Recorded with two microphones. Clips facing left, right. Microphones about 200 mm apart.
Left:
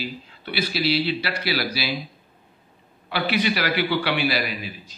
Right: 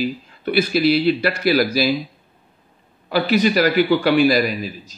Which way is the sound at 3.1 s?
40° right (ahead or behind).